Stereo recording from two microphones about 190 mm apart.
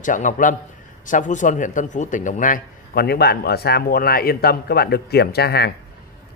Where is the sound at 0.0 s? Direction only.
45° left (ahead or behind); by 5.7 s 60° left (ahead or behind).